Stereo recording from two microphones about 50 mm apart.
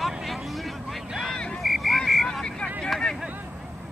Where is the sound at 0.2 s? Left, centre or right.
Centre.